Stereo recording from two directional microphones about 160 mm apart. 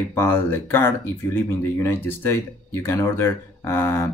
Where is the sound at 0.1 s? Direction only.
15° left (ahead or behind).